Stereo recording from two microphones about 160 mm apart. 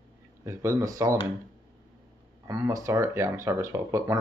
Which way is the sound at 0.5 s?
20° right (ahead or behind).